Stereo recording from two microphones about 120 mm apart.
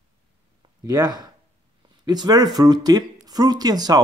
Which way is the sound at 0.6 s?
35° right (ahead or behind).